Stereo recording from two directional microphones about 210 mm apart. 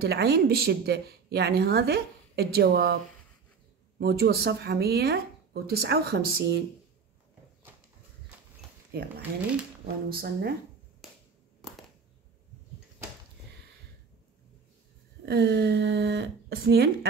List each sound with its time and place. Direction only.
0.0 s a woman's voice: 50° right (ahead or behind)
4.0 s a woman's voice: 50° right (ahead or behind)
8.9 s a woman's voice: 50° right (ahead or behind)
11.0 s finger snapping: centre (ahead or behind)
15.2 s a woman's voice: 50° right (ahead or behind)